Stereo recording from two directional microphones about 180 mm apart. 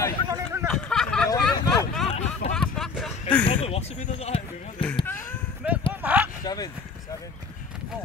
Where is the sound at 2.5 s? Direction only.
Centre (ahead or behind).